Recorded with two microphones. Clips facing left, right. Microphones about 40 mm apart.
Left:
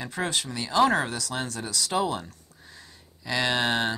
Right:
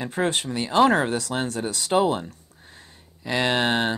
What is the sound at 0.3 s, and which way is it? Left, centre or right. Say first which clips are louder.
Speech: right 4 dB; right.